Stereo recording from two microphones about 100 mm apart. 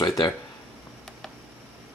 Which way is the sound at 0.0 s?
40° left (ahead or behind).